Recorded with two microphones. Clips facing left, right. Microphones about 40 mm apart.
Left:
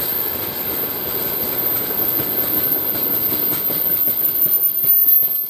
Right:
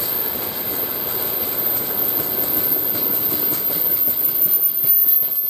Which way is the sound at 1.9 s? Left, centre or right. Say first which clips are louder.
Left 2 dB; centre.